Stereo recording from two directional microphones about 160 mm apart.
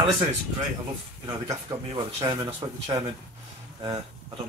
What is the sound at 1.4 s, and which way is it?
Speech, 25° right (ahead or behind).